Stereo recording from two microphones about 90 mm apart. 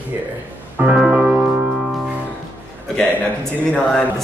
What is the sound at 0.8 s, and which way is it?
Music, 10° right (ahead or behind).